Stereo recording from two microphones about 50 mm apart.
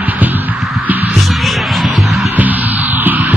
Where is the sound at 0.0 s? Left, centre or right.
Right.